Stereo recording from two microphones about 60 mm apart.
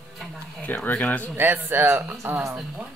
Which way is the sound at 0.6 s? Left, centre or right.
Left.